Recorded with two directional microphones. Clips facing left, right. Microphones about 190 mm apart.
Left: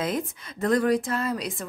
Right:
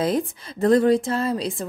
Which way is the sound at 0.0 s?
30° right (ahead or behind).